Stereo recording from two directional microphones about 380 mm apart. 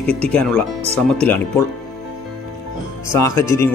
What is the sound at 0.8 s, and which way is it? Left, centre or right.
Speech, centre.